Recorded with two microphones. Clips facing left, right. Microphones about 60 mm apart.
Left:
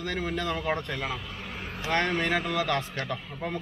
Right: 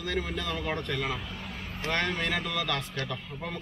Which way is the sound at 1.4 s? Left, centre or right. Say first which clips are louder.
Left 2 dB; left.